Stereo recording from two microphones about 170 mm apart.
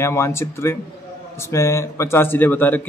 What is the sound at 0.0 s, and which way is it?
A man's voice, 15° left (ahead or behind).